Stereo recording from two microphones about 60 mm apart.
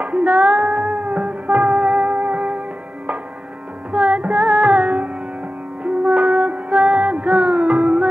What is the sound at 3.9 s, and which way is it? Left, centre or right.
Music, right.